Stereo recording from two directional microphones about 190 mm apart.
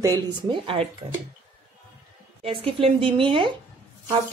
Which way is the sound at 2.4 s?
30° right (ahead or behind).